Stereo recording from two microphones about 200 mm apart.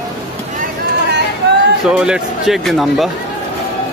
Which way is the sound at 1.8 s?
5° right (ahead or behind).